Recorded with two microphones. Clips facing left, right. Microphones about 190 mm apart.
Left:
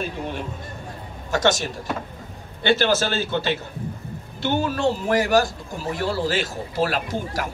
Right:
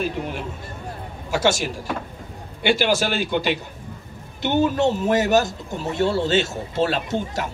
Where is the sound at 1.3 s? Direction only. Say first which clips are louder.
Even; 10° right (ahead or behind).